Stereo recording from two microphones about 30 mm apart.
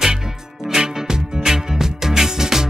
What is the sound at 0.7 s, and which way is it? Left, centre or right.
Music, centre.